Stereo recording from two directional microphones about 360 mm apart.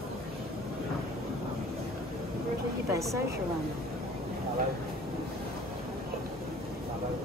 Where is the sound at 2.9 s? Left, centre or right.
Centre.